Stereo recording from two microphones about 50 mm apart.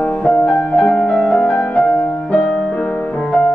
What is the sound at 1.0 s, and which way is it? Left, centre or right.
Music, centre.